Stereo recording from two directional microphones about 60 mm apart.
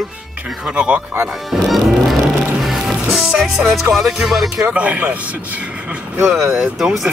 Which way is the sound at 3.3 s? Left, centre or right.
Centre.